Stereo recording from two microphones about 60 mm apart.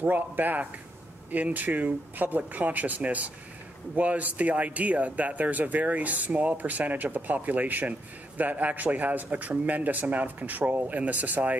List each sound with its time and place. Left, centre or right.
0.0 s speech: right